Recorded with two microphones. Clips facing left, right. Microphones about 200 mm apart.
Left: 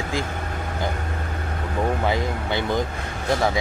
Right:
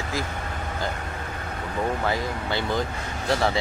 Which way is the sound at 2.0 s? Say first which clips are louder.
Left 3 dB; 20° left (ahead or behind).